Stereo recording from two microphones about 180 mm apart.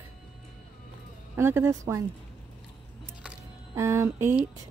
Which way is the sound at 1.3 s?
15° right (ahead or behind).